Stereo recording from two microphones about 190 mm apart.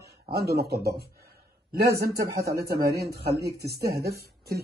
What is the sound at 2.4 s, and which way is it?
Speech, 15° right (ahead or behind).